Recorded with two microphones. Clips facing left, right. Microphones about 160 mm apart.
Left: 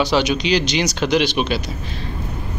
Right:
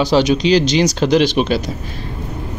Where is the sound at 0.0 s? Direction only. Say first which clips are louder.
Right 4 dB; 40° right (ahead or behind).